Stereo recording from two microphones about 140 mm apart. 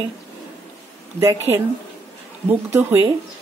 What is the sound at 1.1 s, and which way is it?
A woman's voice, 20° right (ahead or behind).